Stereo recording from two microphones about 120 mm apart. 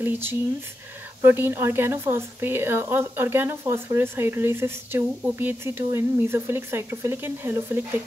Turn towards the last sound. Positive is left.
turn(degrees=-20)  # may be behind; listen again after turning